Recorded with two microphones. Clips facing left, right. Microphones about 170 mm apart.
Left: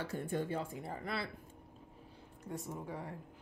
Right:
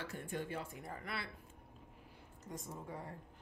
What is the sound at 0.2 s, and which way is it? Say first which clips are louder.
Speech: left 5 dB; 40° left (ahead or behind).